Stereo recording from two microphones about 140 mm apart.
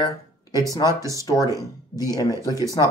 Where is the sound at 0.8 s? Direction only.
20° right (ahead or behind).